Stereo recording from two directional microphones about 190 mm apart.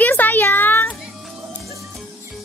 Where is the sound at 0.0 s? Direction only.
10° left (ahead or behind).